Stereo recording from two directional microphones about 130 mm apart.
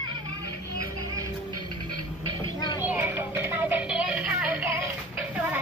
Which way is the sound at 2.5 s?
30° left (ahead or behind).